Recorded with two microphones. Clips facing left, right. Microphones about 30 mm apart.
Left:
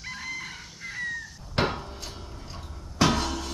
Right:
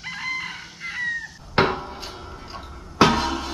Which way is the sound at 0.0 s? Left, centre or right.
Right.